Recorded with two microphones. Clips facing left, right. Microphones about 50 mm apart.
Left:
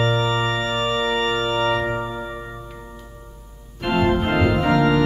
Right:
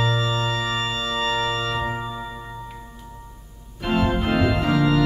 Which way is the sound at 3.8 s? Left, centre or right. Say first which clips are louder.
Left 3 dB; centre.